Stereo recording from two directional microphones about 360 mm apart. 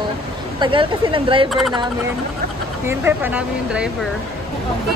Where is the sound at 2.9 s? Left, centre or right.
Centre.